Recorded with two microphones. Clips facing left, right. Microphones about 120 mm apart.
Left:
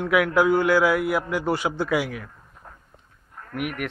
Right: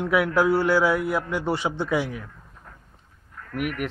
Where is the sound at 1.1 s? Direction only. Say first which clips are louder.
Left 1 dB; centre (ahead or behind).